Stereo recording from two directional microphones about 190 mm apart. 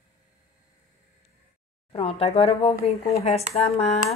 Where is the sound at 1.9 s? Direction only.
30° left (ahead or behind).